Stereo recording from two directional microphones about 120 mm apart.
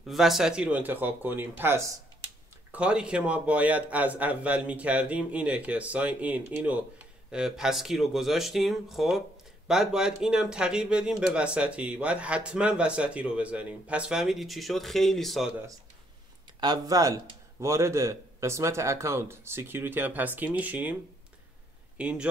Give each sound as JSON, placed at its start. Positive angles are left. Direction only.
{"t": 0.0, "sound": "speech", "side_deg": 0}
{"t": 16.5, "sound": "speech", "side_deg": -35}
{"t": 21.9, "sound": "speech", "side_deg": -10}